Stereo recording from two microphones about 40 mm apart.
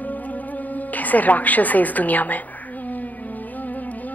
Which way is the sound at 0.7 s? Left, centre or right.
Left.